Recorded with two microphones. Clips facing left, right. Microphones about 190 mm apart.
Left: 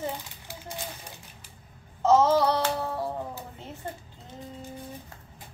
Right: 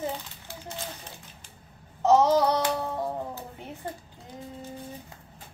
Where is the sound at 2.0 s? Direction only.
15° right (ahead or behind).